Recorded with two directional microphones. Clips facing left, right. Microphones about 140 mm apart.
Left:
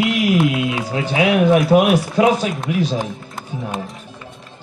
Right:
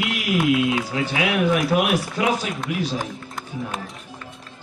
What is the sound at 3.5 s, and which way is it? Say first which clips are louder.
Music: left 4 dB; 25° left (ahead or behind).